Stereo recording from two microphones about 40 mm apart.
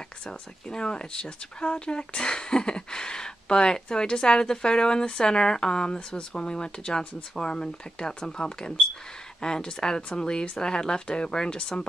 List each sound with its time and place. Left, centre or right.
0.3 s speech: centre